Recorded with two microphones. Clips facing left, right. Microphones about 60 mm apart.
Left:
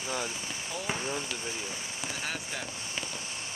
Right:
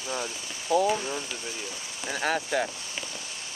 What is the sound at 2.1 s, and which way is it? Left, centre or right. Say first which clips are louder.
Speech: right 12 dB; right.